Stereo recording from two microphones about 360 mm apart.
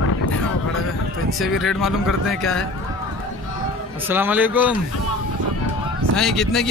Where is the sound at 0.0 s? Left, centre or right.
Left.